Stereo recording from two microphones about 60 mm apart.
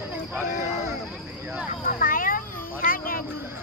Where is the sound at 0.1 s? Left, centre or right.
Right.